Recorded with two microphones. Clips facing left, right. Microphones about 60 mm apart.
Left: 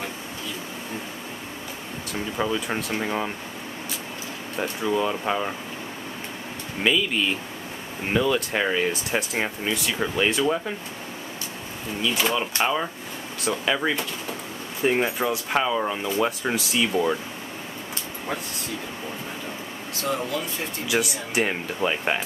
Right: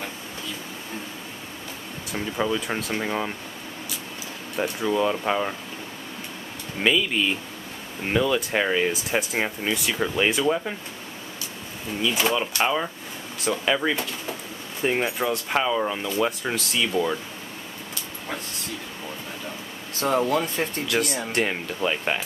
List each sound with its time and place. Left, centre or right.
2.1 s speech: centre
4.6 s speech: centre
6.8 s speech: centre
12.0 s speech: centre
20.0 s speech: right
20.8 s speech: centre